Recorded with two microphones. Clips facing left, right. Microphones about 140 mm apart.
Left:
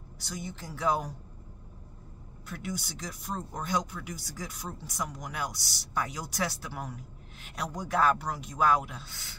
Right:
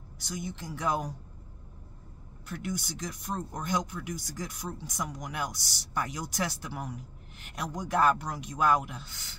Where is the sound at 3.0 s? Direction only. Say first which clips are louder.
Right 2 dB; 5° left (ahead or behind).